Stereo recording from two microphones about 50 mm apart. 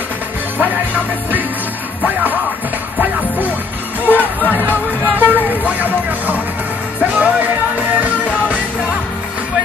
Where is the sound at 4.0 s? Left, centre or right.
Left.